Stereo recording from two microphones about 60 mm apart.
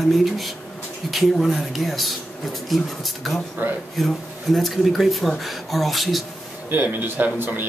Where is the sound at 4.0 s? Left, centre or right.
Centre.